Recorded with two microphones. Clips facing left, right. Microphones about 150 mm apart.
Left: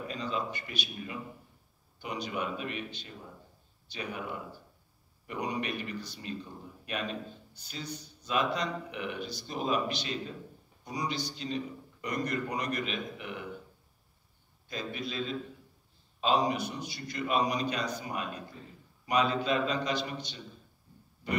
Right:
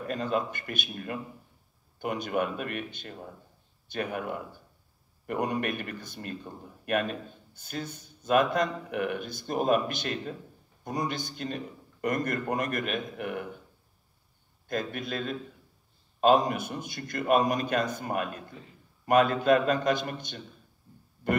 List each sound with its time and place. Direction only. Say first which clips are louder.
0.0 s a man's voice: right 5 dB; 50° right (ahead or behind)
14.7 s a man's voice: right 5 dB; 50° right (ahead or behind)